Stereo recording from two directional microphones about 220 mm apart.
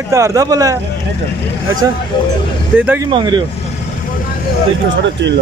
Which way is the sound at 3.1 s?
20° right (ahead or behind).